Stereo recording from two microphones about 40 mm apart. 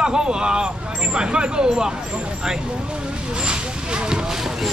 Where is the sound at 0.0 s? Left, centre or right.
Centre.